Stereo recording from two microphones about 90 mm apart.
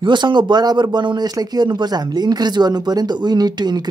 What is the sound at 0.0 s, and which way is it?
Speech, 60° right (ahead or behind).